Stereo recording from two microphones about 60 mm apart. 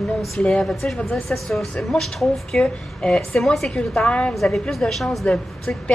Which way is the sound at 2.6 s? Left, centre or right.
Centre.